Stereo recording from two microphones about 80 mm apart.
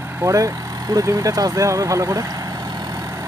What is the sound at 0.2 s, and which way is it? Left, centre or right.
Speech, right.